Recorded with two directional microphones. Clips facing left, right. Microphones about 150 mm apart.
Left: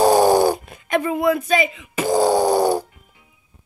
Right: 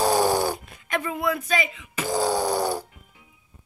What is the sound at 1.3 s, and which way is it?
Speech, 15° left (ahead or behind).